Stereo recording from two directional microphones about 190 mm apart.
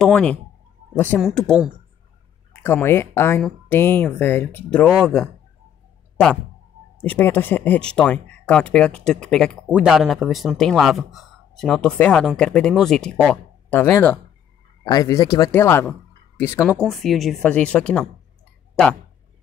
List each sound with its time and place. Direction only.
0.0 s speech: 5° left (ahead or behind)
2.6 s speech: 10° left (ahead or behind)
7.0 s speech: 10° left (ahead or behind)
16.9 s speech: centre (ahead or behind)